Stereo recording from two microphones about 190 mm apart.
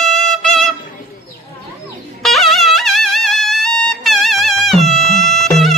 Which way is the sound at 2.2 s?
Centre (ahead or behind).